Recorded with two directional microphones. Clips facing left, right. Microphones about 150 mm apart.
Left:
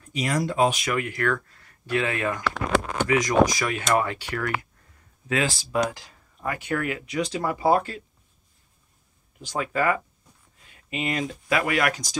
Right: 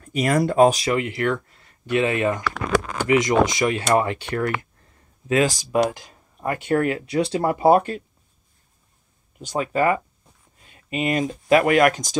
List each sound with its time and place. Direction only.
0.0 s speech: 55° right (ahead or behind); by 2.4 s 20° right (ahead or behind)
2.4 s a sound: 25° left (ahead or behind)
3.1 s speech: 25° right (ahead or behind)
5.5 s speech: 15° right (ahead or behind)
6.4 s speech: 35° right (ahead or behind); by 8.0 s 20° right (ahead or behind)
9.6 s speech: 25° right (ahead or behind)
10.7 s a sound: 40° right (ahead or behind)
11.5 s speech: 40° right (ahead or behind)